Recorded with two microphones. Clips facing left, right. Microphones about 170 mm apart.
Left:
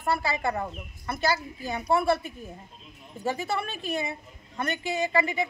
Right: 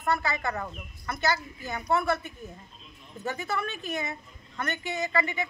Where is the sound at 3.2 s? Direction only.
30° left (ahead or behind).